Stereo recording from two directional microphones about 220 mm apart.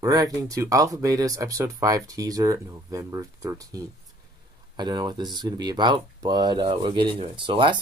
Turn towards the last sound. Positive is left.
turn(degrees=-20)  # may be behind; listen again after turning